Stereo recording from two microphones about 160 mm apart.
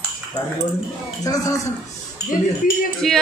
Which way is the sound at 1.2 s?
20° left (ahead or behind).